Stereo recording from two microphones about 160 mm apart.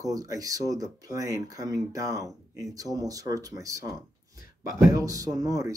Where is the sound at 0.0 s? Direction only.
20° right (ahead or behind).